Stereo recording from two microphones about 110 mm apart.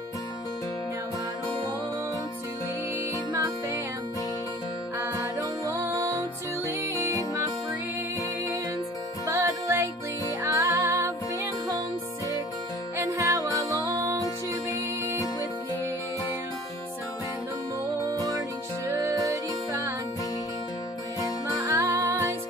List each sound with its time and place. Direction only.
3.3 s music: 35° right (ahead or behind)
4.9 s music: 25° right (ahead or behind)
9.2 s music: 30° right (ahead or behind)
12.9 s music: 30° right (ahead or behind)
19.0 s music: 30° right (ahead or behind)
21.6 s music: 25° right (ahead or behind)